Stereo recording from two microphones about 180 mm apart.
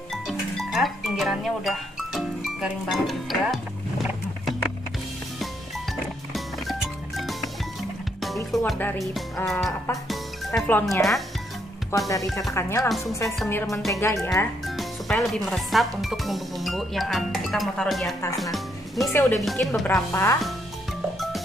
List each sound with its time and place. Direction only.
0.1 s music: centre (ahead or behind)
6.3 s music: centre (ahead or behind)
8.5 s speech: 5° left (ahead or behind)
11.9 s speech: 15° left (ahead or behind)
14.8 s speech: centre (ahead or behind)
18.4 s music: centre (ahead or behind)
19.3 s speech: centre (ahead or behind)
20.1 s speech: 15° left (ahead or behind)